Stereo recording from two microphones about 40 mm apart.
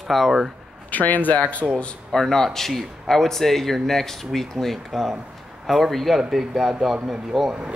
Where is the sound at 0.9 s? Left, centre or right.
Left.